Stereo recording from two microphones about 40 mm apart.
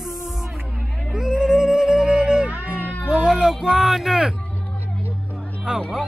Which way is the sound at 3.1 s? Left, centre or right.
Centre.